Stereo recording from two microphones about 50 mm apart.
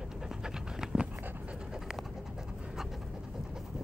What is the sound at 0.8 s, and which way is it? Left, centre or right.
Dog, centre.